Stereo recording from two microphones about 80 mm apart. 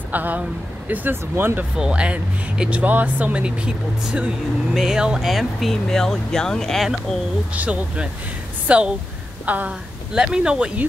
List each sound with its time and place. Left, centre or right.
0.1 s speech: centre
1.8 s speech: centre
7.5 s speech: centre